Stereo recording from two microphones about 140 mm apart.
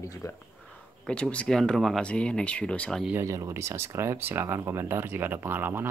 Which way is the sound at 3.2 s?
20° right (ahead or behind).